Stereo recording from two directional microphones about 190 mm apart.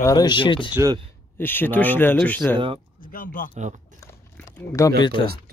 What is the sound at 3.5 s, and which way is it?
Speech, 40° right (ahead or behind).